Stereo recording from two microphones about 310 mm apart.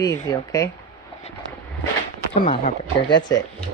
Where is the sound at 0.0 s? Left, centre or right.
Centre.